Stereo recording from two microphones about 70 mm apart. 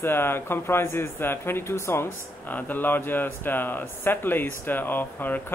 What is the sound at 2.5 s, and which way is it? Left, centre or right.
Speech, left.